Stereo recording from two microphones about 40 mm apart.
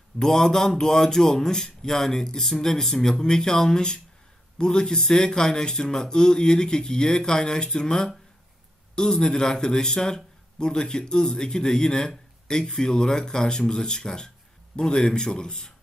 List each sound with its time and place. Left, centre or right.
0.2 s speech: centre